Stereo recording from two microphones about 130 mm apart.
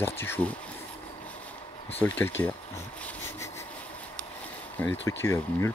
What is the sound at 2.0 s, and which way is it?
Speech, 15° left (ahead or behind).